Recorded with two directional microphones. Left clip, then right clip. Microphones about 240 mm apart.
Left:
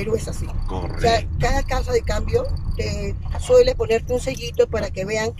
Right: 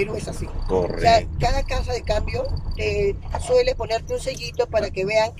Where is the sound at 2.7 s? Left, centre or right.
Centre.